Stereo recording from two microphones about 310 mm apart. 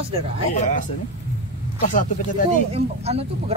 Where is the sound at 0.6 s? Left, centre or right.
Left.